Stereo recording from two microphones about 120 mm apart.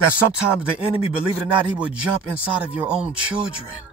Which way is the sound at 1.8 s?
10° right (ahead or behind).